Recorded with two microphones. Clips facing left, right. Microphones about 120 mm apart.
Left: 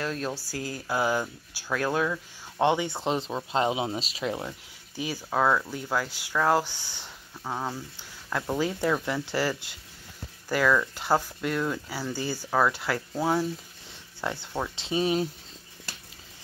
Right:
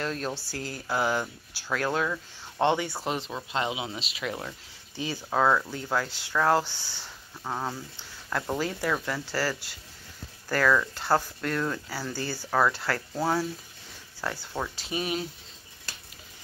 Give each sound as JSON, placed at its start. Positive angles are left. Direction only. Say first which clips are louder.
{"t": 0.0, "sound": "speech", "louder": "even", "side_deg": 5}
{"t": 4.5, "sound": "speech", "louder": "left 2 dB", "side_deg": 10}
{"t": 5.3, "sound": "speech", "louder": "right 1 dB", "side_deg": 0}
{"t": 7.4, "sound": "speech", "louder": "even", "side_deg": 0}
{"t": 10.5, "sound": "speech", "louder": "even", "side_deg": 5}